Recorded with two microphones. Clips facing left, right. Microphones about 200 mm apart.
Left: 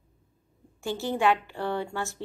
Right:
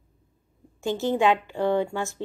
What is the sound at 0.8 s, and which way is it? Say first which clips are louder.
A woman's voice: right 3 dB; 20° right (ahead or behind).